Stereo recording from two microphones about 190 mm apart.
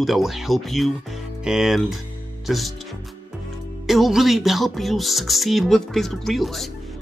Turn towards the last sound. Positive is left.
turn(degrees=0)  # may be behind; listen again after turning